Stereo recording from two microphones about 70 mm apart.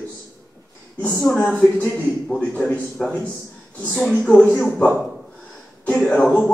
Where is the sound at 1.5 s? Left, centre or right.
Centre.